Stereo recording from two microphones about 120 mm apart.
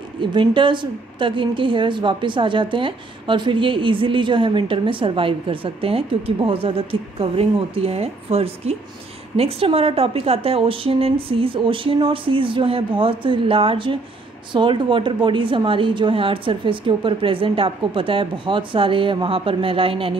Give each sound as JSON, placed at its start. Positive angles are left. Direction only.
{"t": 0.2, "sound": "a woman's voice", "side_deg": -45}